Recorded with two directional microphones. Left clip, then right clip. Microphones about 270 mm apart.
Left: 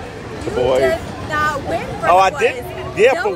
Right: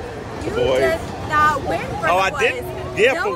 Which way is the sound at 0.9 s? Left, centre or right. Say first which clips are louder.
Left 2 dB; centre.